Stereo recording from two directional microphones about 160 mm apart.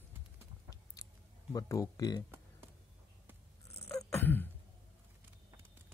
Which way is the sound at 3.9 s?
15° left (ahead or behind).